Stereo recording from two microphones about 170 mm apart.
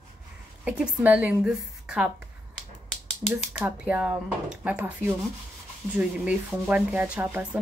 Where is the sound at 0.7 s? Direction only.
10° right (ahead or behind).